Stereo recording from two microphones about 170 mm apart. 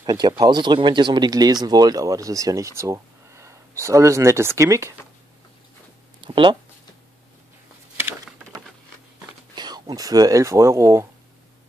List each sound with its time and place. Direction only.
0.0 s speech: 25° right (ahead or behind)
6.2 s speech: 30° right (ahead or behind)
9.6 s speech: 25° right (ahead or behind)